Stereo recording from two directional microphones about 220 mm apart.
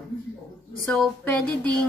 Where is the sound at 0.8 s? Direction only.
5° left (ahead or behind).